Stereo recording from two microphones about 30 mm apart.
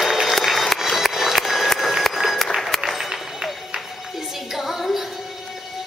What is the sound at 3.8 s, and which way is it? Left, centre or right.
Music, centre.